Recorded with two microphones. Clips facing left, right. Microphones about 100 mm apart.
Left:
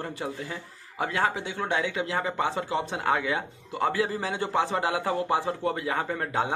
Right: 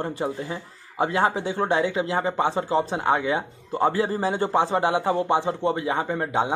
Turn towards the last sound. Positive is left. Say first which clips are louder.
# right 4 dB
turn(degrees=-20)  # may be behind; listen again after turning